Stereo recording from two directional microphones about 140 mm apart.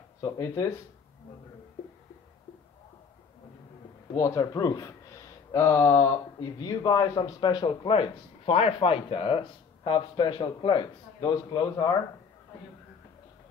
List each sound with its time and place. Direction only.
0.2 s speech: 25° left (ahead or behind)
4.2 s a man's voice: 25° left (ahead or behind)